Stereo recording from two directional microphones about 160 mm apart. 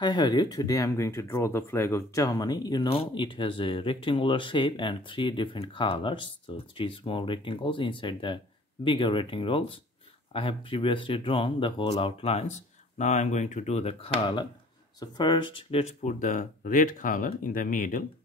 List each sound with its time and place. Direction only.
0.0 s speech: 25° left (ahead or behind); by 18.0 s 55° left (ahead or behind)